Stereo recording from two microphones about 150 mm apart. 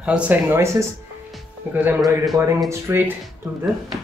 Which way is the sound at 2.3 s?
25° right (ahead or behind).